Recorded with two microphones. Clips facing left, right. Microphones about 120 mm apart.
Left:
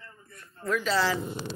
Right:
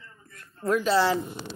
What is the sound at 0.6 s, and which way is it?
Speech, 45° right (ahead or behind).